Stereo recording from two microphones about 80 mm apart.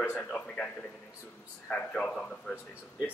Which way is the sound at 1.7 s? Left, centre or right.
Centre.